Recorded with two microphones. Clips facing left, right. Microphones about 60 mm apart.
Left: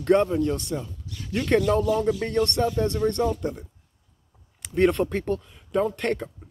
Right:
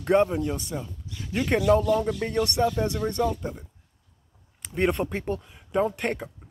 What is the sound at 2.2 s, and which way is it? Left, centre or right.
Speech, centre.